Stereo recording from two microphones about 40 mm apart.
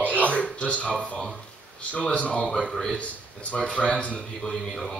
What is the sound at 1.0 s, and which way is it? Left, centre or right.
Speech, left.